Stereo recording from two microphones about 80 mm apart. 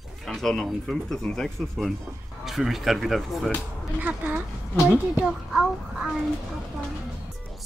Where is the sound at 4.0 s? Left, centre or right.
Right.